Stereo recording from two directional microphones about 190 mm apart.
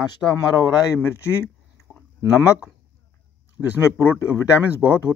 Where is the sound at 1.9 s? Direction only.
5° right (ahead or behind).